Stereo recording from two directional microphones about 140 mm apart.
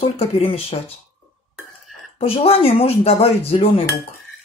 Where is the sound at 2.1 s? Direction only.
45° left (ahead or behind).